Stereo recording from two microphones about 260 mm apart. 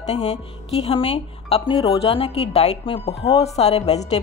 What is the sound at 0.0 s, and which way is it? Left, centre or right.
Speech, left.